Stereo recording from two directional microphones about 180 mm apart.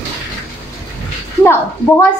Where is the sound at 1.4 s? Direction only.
15° left (ahead or behind).